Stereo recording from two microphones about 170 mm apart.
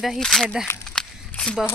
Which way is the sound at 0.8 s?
5° left (ahead or behind).